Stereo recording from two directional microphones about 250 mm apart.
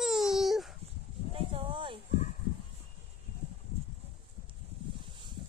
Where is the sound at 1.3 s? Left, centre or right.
Right.